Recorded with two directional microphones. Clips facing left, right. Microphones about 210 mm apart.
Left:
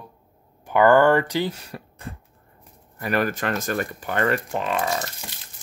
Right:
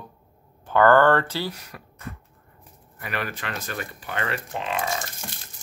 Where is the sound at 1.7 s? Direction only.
30° left (ahead or behind).